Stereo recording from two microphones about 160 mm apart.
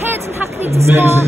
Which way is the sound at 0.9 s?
15° right (ahead or behind).